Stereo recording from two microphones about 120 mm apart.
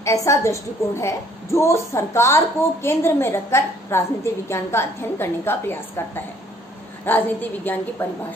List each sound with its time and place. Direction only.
0.0 s a woman's voice: 25° left (ahead or behind)